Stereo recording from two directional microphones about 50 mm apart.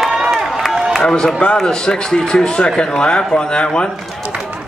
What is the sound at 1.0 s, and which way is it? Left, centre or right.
Speech, centre.